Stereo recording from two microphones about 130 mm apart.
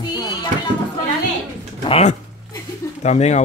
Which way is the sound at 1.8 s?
50° left (ahead or behind).